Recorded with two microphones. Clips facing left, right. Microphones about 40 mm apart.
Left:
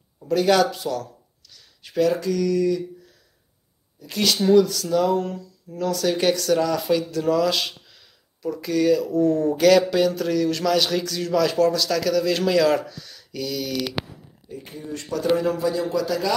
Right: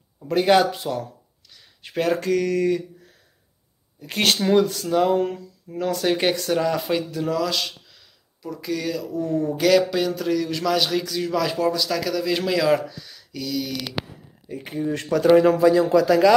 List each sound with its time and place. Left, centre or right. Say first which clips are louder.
0.3 s speech: right 1 dB; right
4.0 s speech: right 1 dB; right
7.2 s speech: left 5 dB; centre
14.5 s speech: right 7 dB; right
16.0 s speech: right 7 dB; right